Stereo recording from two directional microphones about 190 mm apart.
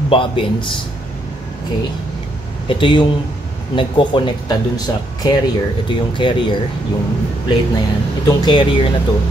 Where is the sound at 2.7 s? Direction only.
25° left (ahead or behind).